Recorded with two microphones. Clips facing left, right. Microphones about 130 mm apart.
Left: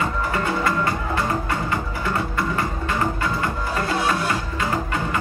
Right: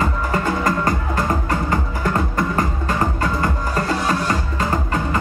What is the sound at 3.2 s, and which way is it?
Music, 40° right (ahead or behind).